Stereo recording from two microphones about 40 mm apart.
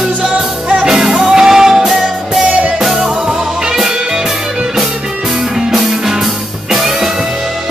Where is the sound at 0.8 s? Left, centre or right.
Centre.